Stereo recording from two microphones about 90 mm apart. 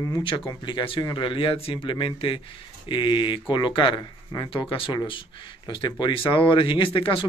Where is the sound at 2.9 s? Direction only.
65° left (ahead or behind).